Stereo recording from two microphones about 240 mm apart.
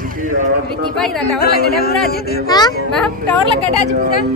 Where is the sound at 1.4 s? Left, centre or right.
Left.